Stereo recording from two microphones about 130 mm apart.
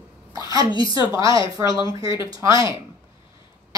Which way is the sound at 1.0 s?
40° left (ahead or behind).